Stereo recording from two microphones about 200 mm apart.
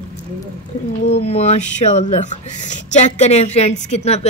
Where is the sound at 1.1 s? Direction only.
30° left (ahead or behind).